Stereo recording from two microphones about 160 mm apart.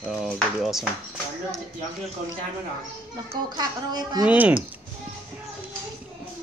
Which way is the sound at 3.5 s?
25° right (ahead or behind).